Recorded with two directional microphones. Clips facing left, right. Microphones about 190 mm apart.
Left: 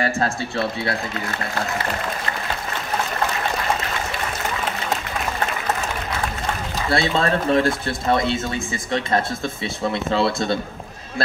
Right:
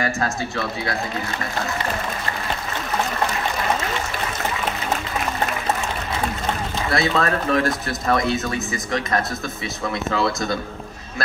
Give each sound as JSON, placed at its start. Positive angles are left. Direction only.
{"t": 0.0, "sound": "speech", "side_deg": 30}
{"t": 6.9, "sound": "speech", "side_deg": 30}